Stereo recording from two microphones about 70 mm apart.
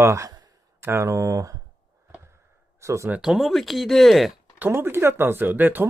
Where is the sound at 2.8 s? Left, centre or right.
Right.